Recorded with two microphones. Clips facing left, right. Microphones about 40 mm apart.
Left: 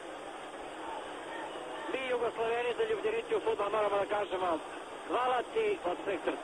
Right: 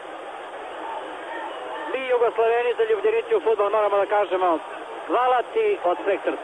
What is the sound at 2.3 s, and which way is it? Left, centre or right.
A man's voice, right.